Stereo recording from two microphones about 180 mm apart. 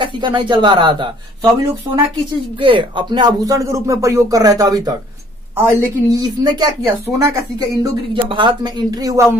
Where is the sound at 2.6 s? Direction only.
25° right (ahead or behind).